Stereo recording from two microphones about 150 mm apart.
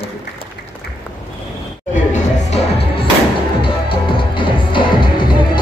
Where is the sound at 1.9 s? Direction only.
55° left (ahead or behind).